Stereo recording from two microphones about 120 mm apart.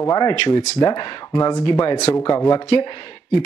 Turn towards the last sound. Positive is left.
turn(degrees=35)  # may be behind; listen again after turning